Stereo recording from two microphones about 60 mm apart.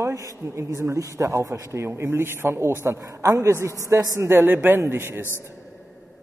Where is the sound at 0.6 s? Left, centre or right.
Right.